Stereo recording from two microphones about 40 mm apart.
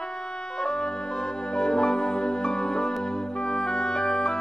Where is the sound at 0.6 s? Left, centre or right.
Centre.